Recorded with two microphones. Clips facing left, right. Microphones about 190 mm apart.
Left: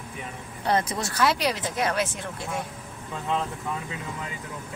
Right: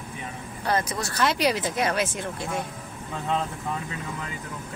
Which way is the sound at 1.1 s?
Centre (ahead or behind).